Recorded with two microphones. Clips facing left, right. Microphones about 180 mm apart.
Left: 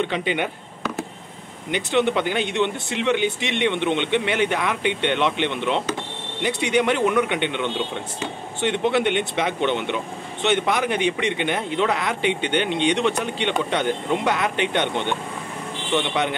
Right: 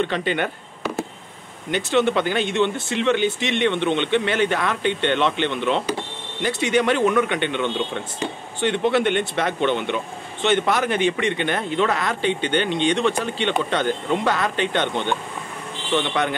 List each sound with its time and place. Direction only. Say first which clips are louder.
0.0 s speech: right 1 dB; 15° left (ahead or behind)
1.9 s speech: right 1 dB; 20° left (ahead or behind)